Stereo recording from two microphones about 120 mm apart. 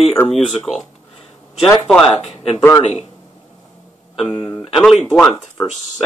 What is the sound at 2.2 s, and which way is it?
Speech, 60° left (ahead or behind).